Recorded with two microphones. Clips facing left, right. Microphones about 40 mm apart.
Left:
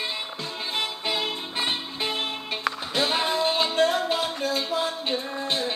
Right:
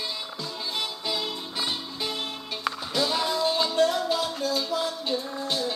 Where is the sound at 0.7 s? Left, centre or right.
Left.